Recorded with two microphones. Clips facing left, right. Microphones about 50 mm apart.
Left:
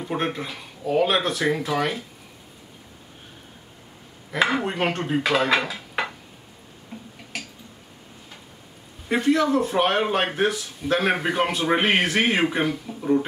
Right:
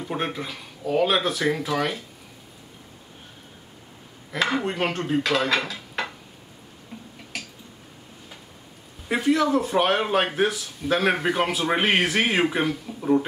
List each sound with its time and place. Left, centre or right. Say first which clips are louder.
0.0 s speech: left 2 dB; centre
4.3 s dishes: left 2 dB; centre
6.9 s a sound: left 1 dB; centre
9.1 s speech: left 1 dB; centre